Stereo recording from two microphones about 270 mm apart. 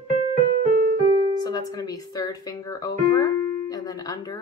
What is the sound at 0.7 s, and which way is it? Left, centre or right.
Keyboard, right.